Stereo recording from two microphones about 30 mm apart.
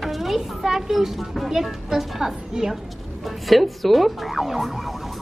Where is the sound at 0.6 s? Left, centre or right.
Centre.